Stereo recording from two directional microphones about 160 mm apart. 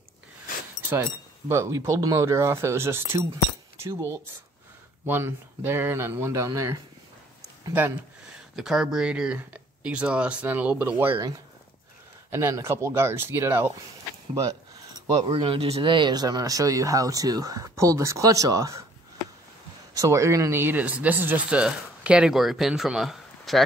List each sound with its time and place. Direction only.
1.5 s speech: 15° right (ahead or behind)
8.5 s speech: 5° right (ahead or behind)
12.3 s speech: 15° right (ahead or behind)
14.3 s a sound: 20° right (ahead or behind)
15.3 s speech: 35° right (ahead or behind); by 18.9 s 20° right (ahead or behind)
19.9 s speech: 20° right (ahead or behind); by 23.6 s centre (ahead or behind)